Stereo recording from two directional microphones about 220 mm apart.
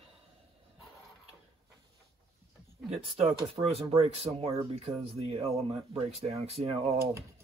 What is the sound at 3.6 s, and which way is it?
Speech, 25° right (ahead or behind).